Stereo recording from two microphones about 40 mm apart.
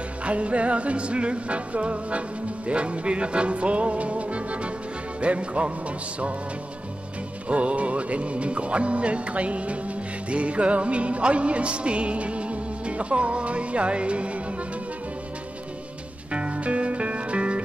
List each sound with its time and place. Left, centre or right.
0.2 s music: right
7.4 s music: right
16.3 s music: right